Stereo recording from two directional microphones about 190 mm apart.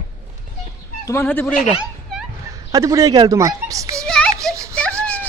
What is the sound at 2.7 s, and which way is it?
Speech, 15° right (ahead or behind).